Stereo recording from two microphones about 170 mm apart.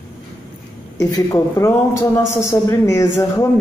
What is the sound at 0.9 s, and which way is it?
Speech, 20° left (ahead or behind).